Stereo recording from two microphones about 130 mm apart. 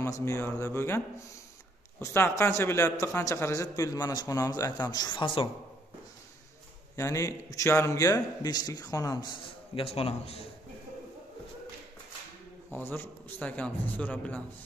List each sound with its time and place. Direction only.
0.0 s a man's voice: 25° left (ahead or behind); by 5.5 s 40° left (ahead or behind)
7.0 s a man's voice: 25° left (ahead or behind)
9.8 s a man's voice: 45° left (ahead or behind)
12.7 s a man's voice: 15° left (ahead or behind)